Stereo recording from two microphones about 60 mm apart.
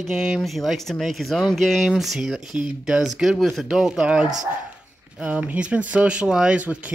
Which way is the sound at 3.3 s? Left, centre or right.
Centre.